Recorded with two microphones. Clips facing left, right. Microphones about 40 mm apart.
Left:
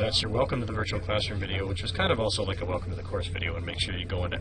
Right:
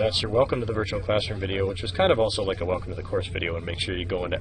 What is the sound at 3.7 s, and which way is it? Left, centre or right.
Speech, centre.